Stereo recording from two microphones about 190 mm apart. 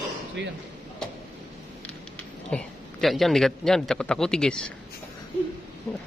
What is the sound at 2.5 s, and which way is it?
A man's voice, centre (ahead or behind).